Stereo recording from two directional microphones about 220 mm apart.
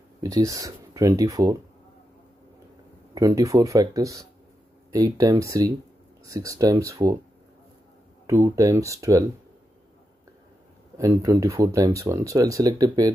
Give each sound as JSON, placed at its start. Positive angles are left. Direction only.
{"t": 0.2, "sound": "speech", "side_deg": -15}
{"t": 3.2, "sound": "speech", "side_deg": -15}
{"t": 8.3, "sound": "speech", "side_deg": -10}
{"t": 11.0, "sound": "speech", "side_deg": -15}